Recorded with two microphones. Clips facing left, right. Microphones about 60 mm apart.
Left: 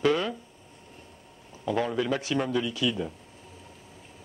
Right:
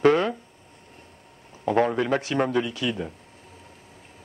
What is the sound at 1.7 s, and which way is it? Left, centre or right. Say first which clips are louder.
Speech: right 5 dB; right.